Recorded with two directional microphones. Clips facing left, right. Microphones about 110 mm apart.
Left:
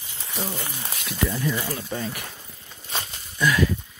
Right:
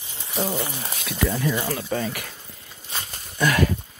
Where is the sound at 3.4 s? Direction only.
55° right (ahead or behind).